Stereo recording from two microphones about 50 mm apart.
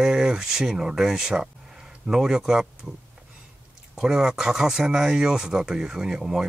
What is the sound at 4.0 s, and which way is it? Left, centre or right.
Speech, centre.